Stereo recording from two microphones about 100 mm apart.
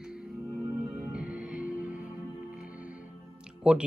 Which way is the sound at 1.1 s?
10° right (ahead or behind).